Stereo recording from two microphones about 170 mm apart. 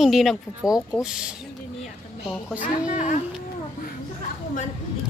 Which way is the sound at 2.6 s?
45° left (ahead or behind).